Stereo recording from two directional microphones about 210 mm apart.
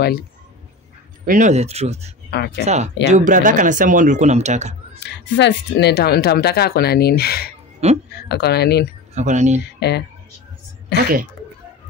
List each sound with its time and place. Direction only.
1.2 s speech: 35° right (ahead or behind)
2.3 s speech: 50° left (ahead or behind)
2.6 s speech: 30° right (ahead or behind)
5.0 s speech: 55° left (ahead or behind)
7.8 s speech: 30° right (ahead or behind)
8.3 s speech: 50° left (ahead or behind)
9.1 s speech: 35° right (ahead or behind)
9.8 s speech: 50° left (ahead or behind)
11.0 s speech: 40° right (ahead or behind)